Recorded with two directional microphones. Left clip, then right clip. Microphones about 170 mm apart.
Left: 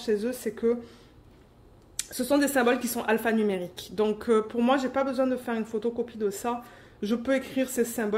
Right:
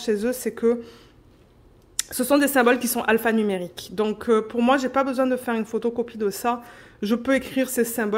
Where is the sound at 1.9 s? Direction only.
40° right (ahead or behind).